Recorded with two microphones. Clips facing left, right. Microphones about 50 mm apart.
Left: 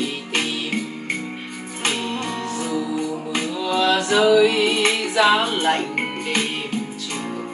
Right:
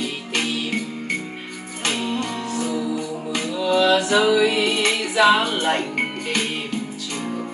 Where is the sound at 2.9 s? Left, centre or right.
Left.